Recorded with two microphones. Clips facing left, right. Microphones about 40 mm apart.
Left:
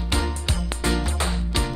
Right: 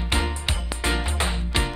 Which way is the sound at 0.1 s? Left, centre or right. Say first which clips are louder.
Even; right.